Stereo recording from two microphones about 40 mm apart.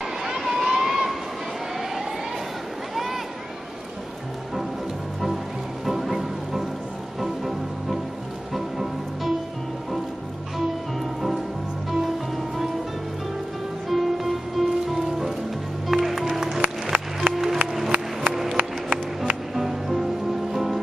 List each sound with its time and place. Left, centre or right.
0.2 s vehicle: centre
5.9 s music: centre
13.8 s music: centre
16.9 s music: right
17.3 s music: centre
18.6 s music: right
19.5 s music: centre